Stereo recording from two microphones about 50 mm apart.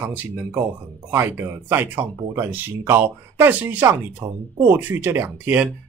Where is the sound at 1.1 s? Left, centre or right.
Right.